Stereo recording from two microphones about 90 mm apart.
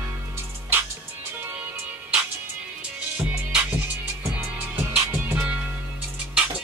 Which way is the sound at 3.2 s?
20° right (ahead or behind).